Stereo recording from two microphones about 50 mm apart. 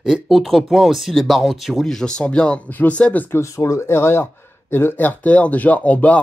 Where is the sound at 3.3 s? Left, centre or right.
Left.